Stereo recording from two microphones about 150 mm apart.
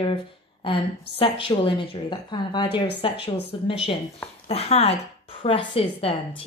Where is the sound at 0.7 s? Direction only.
35° left (ahead or behind).